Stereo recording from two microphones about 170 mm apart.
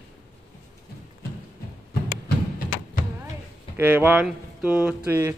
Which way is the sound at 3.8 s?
10° right (ahead or behind).